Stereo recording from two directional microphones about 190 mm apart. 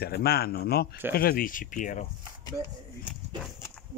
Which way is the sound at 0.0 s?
55° left (ahead or behind).